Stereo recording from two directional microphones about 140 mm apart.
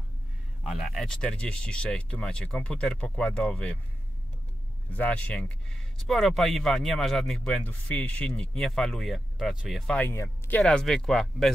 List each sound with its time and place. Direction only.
0.7 s speech: centre (ahead or behind)
4.9 s speech: 10° left (ahead or behind)
10.0 s speech: 25° left (ahead or behind)
10.5 s speech: 5° left (ahead or behind)